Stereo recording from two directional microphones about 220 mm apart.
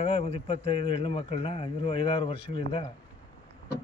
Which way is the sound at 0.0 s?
25° left (ahead or behind).